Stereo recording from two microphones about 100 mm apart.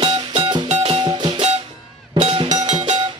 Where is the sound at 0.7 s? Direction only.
80° right.